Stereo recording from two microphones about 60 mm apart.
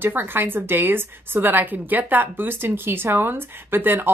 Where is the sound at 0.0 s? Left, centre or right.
Right.